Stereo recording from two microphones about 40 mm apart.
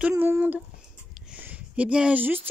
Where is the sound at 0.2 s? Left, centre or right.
Right.